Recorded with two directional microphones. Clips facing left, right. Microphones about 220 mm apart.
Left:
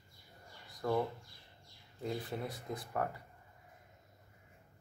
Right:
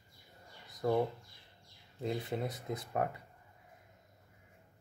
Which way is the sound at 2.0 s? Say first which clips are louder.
Right 3 dB; 20° right (ahead or behind).